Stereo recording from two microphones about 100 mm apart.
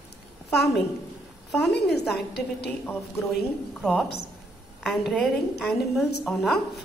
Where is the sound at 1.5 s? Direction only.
Centre (ahead or behind).